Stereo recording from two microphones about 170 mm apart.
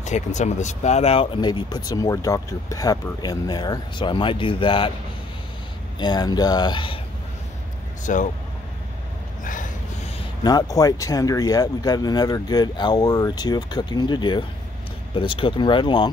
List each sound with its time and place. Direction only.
0.0 s speech: 45° left (ahead or behind)
5.9 s speech: 25° left (ahead or behind)
8.0 s speech: 50° left (ahead or behind)
9.4 s a sound: 50° left (ahead or behind)
10.4 s speech: 20° left (ahead or behind)